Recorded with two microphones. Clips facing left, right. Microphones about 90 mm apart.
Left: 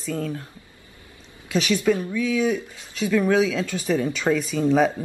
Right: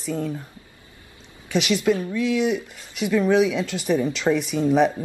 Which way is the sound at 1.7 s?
20° right (ahead or behind).